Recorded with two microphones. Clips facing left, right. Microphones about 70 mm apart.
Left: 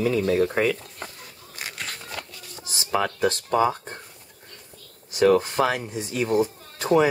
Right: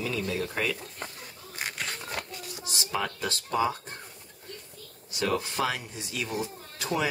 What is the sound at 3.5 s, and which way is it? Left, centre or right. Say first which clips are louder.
Speech: left 3 dB; left.